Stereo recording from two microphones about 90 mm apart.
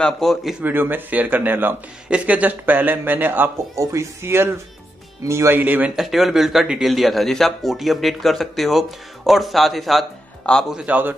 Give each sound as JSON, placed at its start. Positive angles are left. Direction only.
{"t": 0.0, "sound": "speech", "side_deg": 0}
{"t": 0.6, "sound": "a man's voice", "side_deg": -20}
{"t": 3.7, "sound": "a man's voice", "side_deg": -35}
{"t": 5.6, "sound": "a man's voice", "side_deg": -20}
{"t": 5.9, "sound": "a man's voice", "side_deg": 0}
{"t": 10.7, "sound": "a man's voice", "side_deg": -15}